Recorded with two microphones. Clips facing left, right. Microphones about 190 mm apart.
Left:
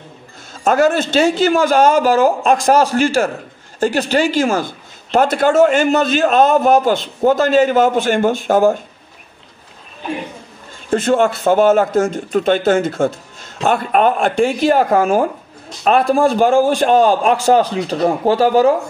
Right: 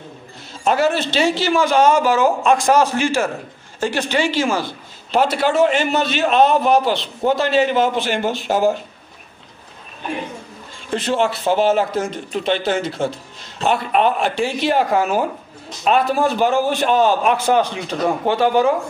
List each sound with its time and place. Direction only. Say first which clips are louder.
0.7 s speech: left 4 dB; 45° left (ahead or behind)
10.9 s speech: left 5 dB; 50° left (ahead or behind)